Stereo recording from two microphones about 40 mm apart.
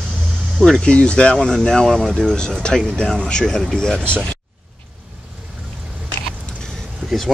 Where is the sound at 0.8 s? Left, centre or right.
Left.